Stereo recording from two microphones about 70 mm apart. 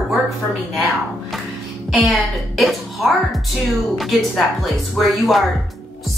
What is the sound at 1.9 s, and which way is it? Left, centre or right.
A child's voice, centre.